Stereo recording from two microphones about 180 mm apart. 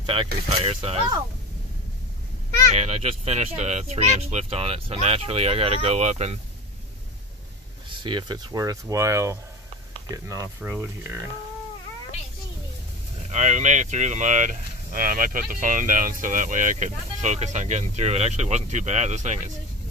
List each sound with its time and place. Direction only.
0.0 s speech: 30° right (ahead or behind)
2.7 s speech: 35° right (ahead or behind)
7.9 s speech: 25° right (ahead or behind)
13.3 s speech: 40° right (ahead or behind)